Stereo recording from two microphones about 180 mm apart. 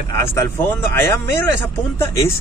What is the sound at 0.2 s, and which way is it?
Speech, 15° left (ahead or behind).